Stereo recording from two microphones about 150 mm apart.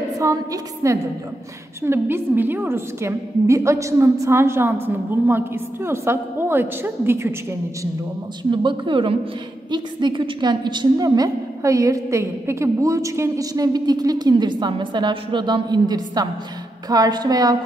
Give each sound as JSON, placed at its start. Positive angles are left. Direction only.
{"t": 0.2, "sound": "a woman's voice", "side_deg": -20}
{"t": 8.5, "sound": "a woman's voice", "side_deg": -35}